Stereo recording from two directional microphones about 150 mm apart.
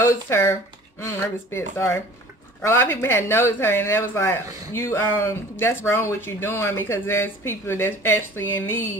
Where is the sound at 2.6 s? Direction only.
15° left (ahead or behind).